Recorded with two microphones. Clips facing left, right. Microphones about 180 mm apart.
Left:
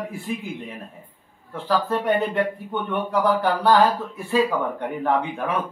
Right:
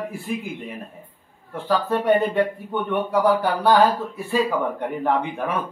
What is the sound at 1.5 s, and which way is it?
Speech, 10° right (ahead or behind).